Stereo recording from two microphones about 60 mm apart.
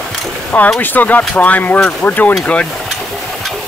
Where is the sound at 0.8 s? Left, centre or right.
Left.